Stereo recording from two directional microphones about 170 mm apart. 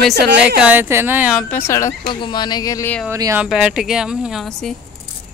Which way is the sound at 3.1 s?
15° right (ahead or behind).